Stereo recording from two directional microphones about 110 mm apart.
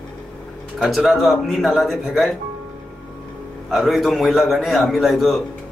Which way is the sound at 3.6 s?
Centre (ahead or behind).